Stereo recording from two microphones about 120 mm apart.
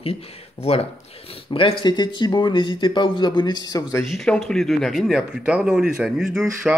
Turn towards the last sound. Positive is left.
turn(degrees=0)  # may be behind; listen again after turning